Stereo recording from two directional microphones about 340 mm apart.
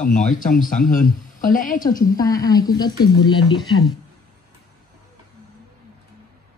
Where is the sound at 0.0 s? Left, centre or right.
Left.